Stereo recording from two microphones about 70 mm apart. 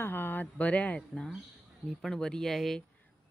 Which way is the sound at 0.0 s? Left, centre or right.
Left.